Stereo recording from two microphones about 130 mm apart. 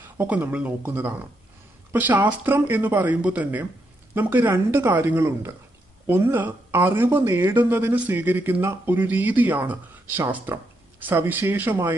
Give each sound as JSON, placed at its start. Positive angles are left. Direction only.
{"t": 0.2, "sound": "speech", "side_deg": -15}